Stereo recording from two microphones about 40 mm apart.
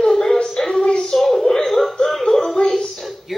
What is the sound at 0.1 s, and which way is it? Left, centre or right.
Music, centre.